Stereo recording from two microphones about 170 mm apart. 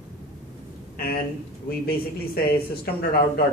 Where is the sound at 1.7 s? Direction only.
65° left (ahead or behind).